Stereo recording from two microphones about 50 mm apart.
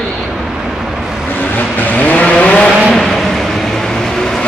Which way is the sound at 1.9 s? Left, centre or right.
Left.